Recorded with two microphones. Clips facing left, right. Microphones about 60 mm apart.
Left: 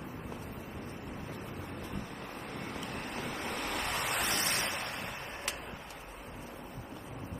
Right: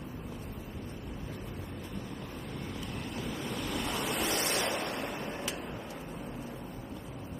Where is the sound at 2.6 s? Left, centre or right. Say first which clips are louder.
Left 1 dB; left.